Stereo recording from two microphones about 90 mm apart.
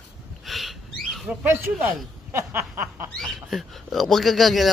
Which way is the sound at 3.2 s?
Centre (ahead or behind).